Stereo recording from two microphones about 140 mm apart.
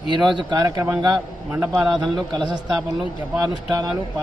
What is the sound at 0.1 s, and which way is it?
Speech, 30° right (ahead or behind).